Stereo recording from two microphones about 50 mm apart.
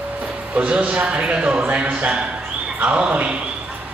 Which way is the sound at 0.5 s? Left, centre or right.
Right.